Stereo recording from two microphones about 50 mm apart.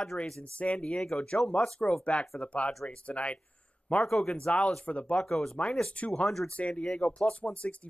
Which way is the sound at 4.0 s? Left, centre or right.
Centre.